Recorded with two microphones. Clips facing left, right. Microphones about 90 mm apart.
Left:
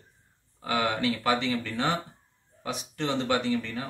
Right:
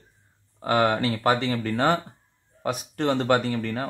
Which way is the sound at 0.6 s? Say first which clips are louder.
Right 5 dB; 45° right (ahead or behind).